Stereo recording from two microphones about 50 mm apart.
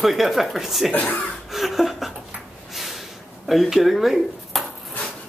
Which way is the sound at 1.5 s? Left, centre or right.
Centre.